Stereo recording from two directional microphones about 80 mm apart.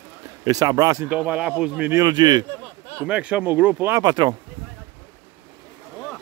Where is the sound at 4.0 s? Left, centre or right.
Right.